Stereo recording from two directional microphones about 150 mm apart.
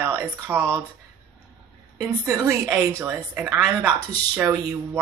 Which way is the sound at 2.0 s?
20° right (ahead or behind).